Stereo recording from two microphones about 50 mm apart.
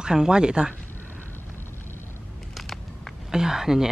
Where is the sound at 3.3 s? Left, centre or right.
Centre.